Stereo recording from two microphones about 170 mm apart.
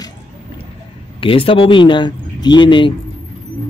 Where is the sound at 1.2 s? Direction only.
30° left (ahead or behind).